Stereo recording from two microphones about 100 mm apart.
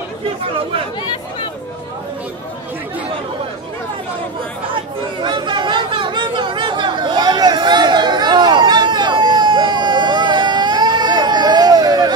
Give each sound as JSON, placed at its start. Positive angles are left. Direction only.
{"t": 4.7, "sound": "chatter", "side_deg": -50}